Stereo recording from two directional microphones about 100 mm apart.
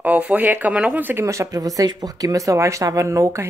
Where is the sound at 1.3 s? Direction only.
35° right (ahead or behind).